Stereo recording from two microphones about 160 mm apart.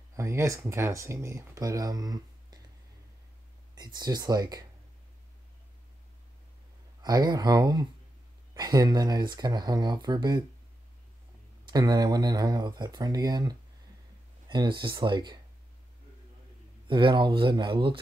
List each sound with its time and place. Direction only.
0.1 s speech: 20° right (ahead or behind)
3.7 s speech: 25° right (ahead or behind)
7.0 s speech: 25° right (ahead or behind)
11.6 s speech: 25° right (ahead or behind)
16.8 s speech: 30° right (ahead or behind)